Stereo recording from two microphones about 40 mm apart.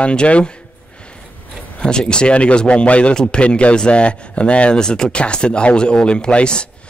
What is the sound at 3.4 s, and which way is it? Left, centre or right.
A man's voice, left.